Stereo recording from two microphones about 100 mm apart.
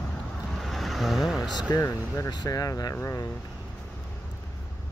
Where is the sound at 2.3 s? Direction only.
40° left (ahead or behind).